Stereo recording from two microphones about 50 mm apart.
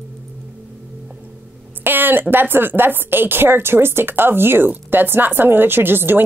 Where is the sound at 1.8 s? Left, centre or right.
Right.